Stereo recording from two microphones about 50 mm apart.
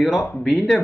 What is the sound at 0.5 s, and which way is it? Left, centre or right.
Speech, centre.